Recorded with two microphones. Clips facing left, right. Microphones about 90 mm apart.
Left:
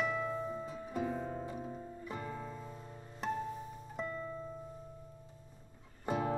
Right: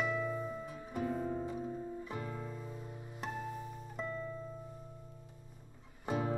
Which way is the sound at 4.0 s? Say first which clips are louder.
Even; 5° right (ahead or behind).